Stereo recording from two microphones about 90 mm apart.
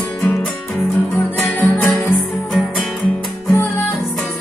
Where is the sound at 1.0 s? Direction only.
25° left (ahead or behind).